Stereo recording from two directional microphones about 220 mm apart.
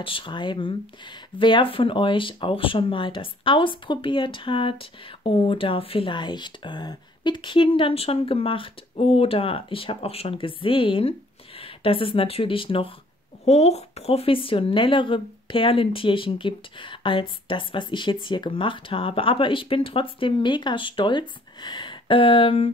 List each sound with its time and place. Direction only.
0.0 s speech: 20° left (ahead or behind)